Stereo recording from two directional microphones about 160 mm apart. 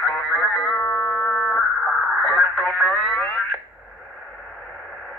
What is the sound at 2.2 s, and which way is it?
Radio, 5° left (ahead or behind).